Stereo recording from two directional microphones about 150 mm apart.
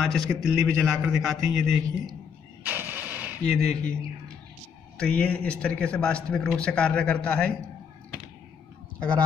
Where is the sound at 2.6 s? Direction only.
15° right (ahead or behind).